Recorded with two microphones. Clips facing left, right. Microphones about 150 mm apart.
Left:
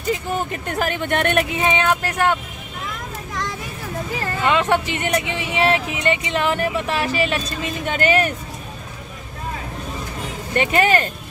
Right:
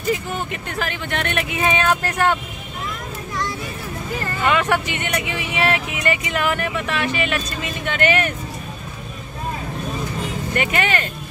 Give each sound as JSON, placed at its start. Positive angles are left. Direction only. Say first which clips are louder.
{"t": 0.5, "sound": "speech", "louder": "left 3 dB", "side_deg": 45}
{"t": 1.6, "sound": "speech", "louder": "even", "side_deg": 20}
{"t": 4.5, "sound": "speech", "louder": "left 1 dB", "side_deg": 20}
{"t": 10.5, "sound": "speech", "louder": "left 5 dB", "side_deg": 30}